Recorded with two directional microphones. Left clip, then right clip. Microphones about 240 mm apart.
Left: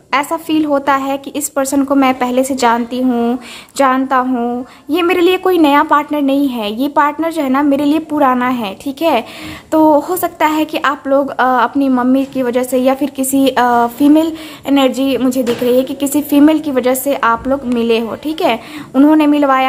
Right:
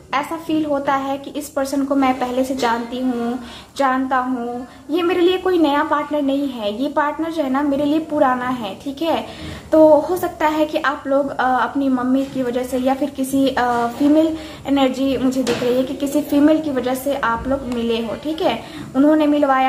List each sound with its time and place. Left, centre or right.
0.1 s a woman's voice: left